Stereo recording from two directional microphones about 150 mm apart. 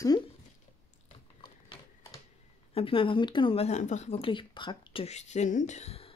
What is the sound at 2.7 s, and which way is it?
Speech, 35° left (ahead or behind).